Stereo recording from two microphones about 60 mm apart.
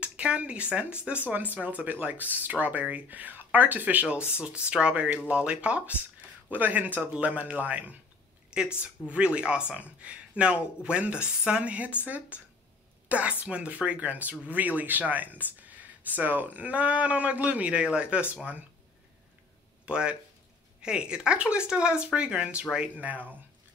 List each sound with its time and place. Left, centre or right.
0.0 s speech: centre
8.5 s a woman's voice: centre
13.1 s speech: right
19.9 s speech: centre